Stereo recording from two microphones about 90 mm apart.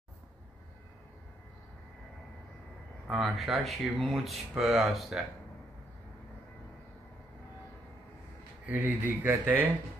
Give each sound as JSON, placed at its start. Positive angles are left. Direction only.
{"t": 3.1, "sound": "speech", "side_deg": 0}
{"t": 8.6, "sound": "speech", "side_deg": -20}